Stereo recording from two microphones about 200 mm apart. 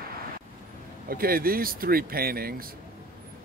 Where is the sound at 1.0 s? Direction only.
45° right (ahead or behind).